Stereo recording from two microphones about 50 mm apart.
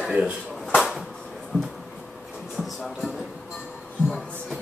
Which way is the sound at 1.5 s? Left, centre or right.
Left.